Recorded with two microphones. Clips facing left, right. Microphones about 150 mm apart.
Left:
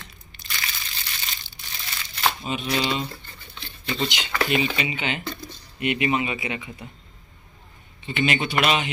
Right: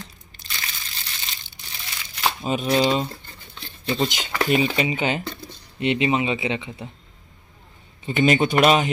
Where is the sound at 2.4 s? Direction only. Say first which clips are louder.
Right 6 dB; 40° right (ahead or behind).